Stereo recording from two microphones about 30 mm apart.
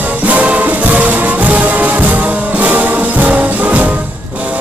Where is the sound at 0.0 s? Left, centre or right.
Right.